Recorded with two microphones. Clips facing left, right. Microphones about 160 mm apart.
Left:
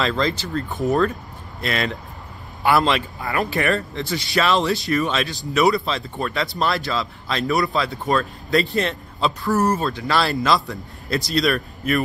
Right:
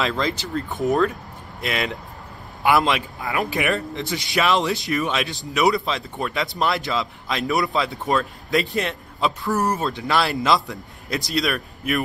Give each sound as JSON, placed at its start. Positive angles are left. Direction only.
{"t": 0.0, "sound": "a man's voice", "side_deg": -10}
{"t": 11.3, "sound": "speech", "side_deg": -5}